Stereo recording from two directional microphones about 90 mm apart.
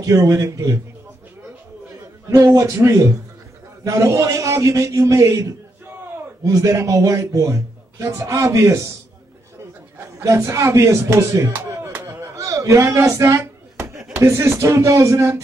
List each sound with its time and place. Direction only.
0.0 s a man's voice: 40° right (ahead or behind)
2.6 s a man's voice: 30° right (ahead or behind)
6.4 s a man's voice: 40° right (ahead or behind)
9.9 s a man's voice: 30° right (ahead or behind)
11.4 s a sound: 20° right (ahead or behind)
14.2 s a man's voice: 30° right (ahead or behind)